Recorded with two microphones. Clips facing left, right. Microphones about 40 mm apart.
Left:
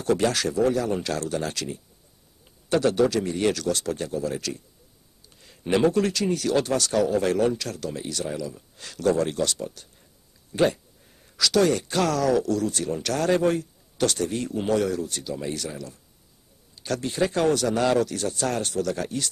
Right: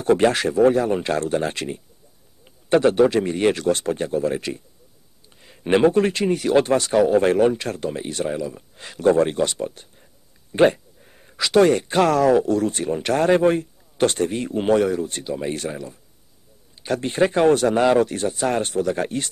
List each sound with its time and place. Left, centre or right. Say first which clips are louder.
0.0 s speech: right 5 dB; right